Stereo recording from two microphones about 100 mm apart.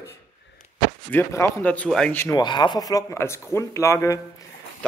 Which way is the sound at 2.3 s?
45° left (ahead or behind).